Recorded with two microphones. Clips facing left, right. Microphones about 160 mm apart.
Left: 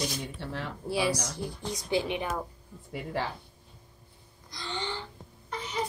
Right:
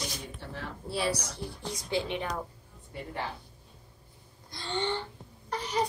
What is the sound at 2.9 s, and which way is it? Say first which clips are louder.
Speech: left 4 dB; 90° left.